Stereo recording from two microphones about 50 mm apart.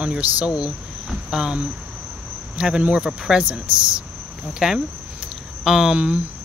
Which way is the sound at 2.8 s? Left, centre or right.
Right.